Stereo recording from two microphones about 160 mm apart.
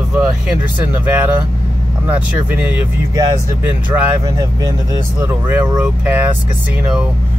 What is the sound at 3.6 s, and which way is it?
Speech, 10° right (ahead or behind).